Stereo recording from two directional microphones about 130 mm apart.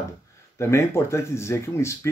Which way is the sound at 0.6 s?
20° left (ahead or behind).